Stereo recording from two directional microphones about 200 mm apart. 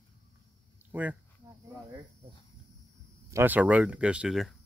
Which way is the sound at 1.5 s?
15° right (ahead or behind).